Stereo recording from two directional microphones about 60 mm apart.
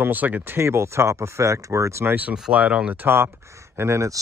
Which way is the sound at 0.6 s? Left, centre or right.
Right.